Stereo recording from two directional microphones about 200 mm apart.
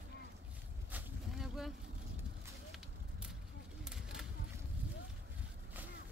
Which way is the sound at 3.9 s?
Centre (ahead or behind).